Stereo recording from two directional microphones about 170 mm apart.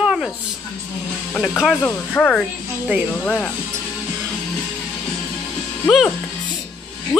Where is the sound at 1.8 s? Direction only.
15° left (ahead or behind).